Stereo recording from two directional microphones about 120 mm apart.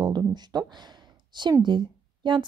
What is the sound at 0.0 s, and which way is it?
Speech, 35° right (ahead or behind).